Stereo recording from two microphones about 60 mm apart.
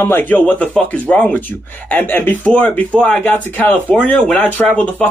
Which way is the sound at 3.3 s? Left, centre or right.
Left.